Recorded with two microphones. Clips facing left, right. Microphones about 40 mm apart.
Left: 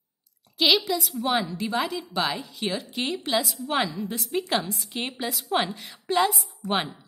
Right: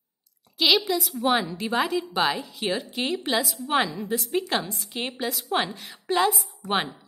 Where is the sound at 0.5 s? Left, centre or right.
Centre.